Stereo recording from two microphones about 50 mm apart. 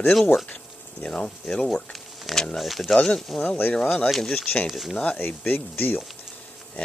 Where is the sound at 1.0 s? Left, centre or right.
Left; by 3.4 s centre.